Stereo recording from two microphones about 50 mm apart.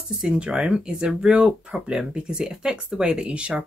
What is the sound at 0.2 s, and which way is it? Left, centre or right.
Speech, centre.